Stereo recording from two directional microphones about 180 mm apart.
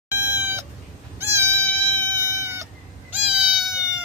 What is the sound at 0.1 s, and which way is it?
Cat, 10° right (ahead or behind).